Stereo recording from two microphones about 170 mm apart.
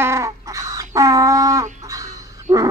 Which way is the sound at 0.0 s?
15° right (ahead or behind).